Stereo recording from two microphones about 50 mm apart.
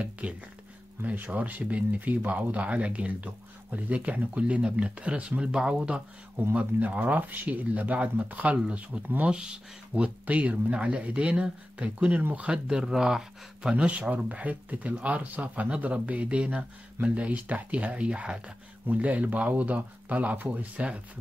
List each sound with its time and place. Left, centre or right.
0.2 s speech: right
10.0 s speech: right
12.2 s speech: right
12.4 s speech: centre
13.7 s speech: right